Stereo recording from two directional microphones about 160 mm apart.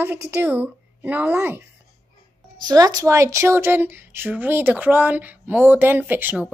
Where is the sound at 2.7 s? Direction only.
25° right (ahead or behind).